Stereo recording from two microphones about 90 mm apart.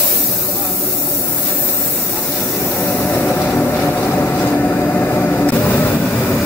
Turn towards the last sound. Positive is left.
turn(degrees=15)  # may be behind; listen again after turning